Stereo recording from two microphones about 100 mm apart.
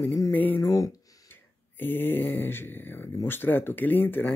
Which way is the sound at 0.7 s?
35° left (ahead or behind).